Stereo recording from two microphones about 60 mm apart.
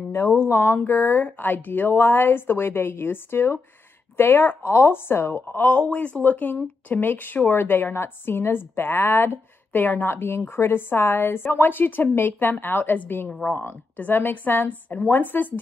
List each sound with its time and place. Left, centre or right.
0.5 s speech: left
5.5 s speech: left